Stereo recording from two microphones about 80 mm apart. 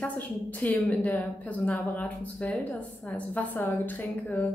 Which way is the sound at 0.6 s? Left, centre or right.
Left.